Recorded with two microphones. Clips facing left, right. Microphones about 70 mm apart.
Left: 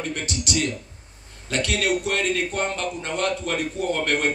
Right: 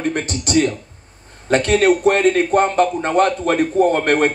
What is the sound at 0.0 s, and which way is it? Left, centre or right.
A man's voice, right.